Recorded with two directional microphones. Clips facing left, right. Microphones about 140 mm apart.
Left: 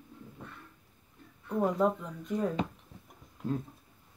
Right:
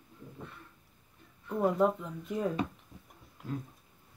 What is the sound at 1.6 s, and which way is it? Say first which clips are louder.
Speech: even; 5° right (ahead or behind).